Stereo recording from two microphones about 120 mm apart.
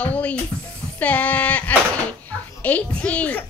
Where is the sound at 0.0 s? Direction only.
10° left (ahead or behind).